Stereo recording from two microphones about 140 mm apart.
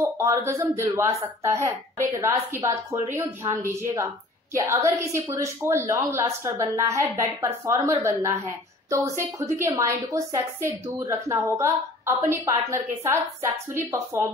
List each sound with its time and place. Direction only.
0.0 s speech: 20° right (ahead or behind)